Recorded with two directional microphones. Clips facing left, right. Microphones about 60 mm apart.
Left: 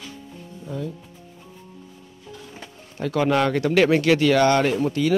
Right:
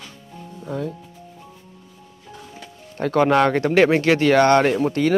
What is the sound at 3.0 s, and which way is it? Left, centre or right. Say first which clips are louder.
Speech: right 4 dB; right.